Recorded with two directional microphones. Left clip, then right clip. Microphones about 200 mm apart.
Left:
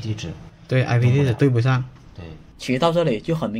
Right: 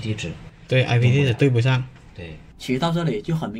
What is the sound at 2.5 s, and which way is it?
Speech, 25° left (ahead or behind).